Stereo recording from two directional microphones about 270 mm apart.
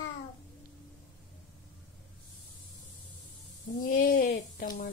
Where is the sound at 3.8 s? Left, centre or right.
Left.